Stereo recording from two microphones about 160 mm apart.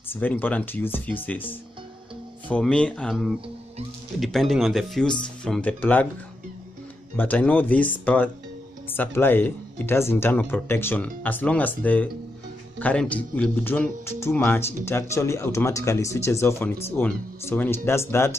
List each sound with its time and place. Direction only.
0.1 s speech: 10° left (ahead or behind)
7.2 s speech: 10° left (ahead or behind)